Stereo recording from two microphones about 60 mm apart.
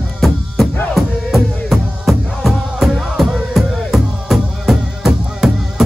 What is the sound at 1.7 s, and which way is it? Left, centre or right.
Music, centre.